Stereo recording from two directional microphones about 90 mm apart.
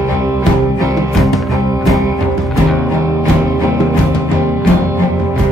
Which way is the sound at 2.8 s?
35° right (ahead or behind).